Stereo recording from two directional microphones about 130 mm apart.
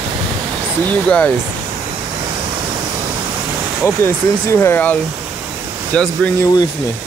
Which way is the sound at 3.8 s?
20° left (ahead or behind).